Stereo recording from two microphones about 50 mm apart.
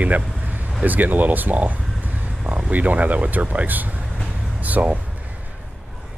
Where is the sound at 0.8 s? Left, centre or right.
Right.